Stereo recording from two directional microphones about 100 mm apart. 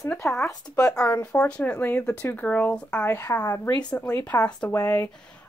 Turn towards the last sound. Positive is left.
turn(degrees=25)  # may be behind; listen again after turning